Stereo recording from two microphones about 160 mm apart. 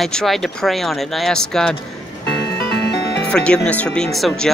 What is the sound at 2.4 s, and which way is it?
Music, 90° left.